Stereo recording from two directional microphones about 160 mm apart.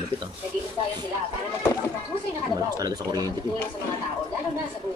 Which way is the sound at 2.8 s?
25° right (ahead or behind).